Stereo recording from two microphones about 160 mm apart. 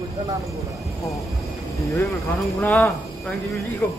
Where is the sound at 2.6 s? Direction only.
10° left (ahead or behind).